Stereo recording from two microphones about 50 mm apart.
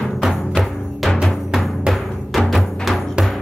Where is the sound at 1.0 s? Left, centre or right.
Centre.